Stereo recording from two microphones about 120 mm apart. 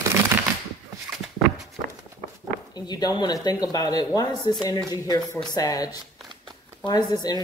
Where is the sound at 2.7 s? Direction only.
35° left (ahead or behind).